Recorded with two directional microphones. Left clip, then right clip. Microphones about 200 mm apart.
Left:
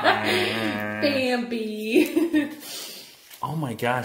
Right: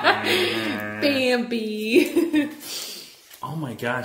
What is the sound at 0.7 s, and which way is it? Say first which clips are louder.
Music: left 1 dB; 35° left (ahead or behind).